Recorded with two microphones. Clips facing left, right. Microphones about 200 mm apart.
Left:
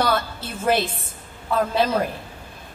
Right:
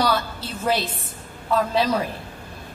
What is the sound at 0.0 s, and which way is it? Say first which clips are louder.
Speech: even; 50° left (ahead or behind).